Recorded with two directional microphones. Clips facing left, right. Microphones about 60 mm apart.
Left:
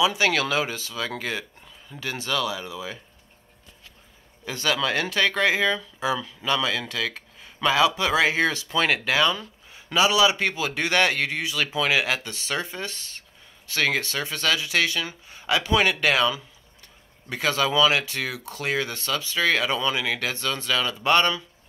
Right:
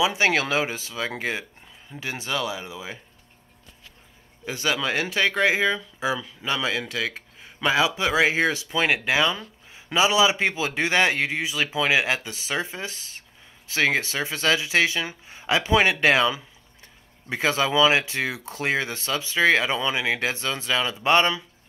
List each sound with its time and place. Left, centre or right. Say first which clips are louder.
0.0 s speech: even; right
4.5 s speech: left 1 dB; centre